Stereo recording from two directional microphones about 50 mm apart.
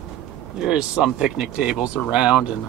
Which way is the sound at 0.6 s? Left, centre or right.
Centre.